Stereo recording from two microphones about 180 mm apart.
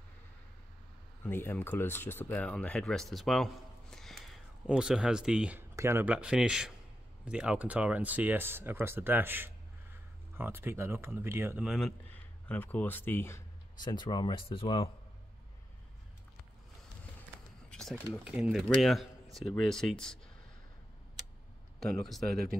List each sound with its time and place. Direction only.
1.2 s speech: 10° left (ahead or behind)
3.9 s a sound: centre (ahead or behind)
4.6 s speech: 5° right (ahead or behind)
12.4 s speech: 10° left (ahead or behind)
13.8 s speech: 25° left (ahead or behind)
17.6 s a sound: 5° left (ahead or behind)
18.1 s speech: 5° right (ahead or behind)
21.7 s speech: centre (ahead or behind)
22.3 s speech: 60° right (ahead or behind)